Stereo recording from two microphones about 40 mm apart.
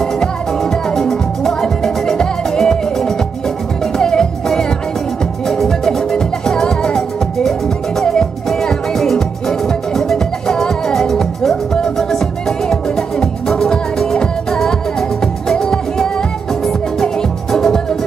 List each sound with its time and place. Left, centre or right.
0.0 s music: centre
5.5 s music: centre